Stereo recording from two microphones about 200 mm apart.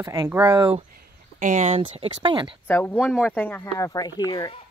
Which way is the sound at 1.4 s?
40° right (ahead or behind).